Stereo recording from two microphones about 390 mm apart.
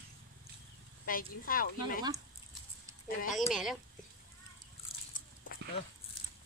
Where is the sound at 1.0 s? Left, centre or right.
Left.